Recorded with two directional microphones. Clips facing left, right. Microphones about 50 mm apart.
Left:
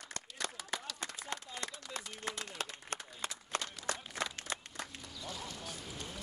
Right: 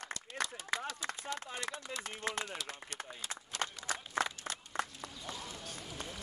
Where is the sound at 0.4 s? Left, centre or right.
Right.